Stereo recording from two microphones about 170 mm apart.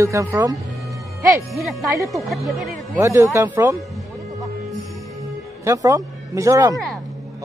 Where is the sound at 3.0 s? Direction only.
15° right (ahead or behind).